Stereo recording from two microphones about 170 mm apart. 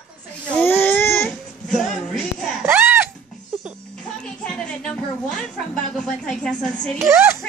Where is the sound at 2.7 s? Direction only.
10° right (ahead or behind).